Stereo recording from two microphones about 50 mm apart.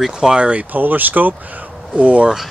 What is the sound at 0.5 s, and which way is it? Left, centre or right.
Speech, right.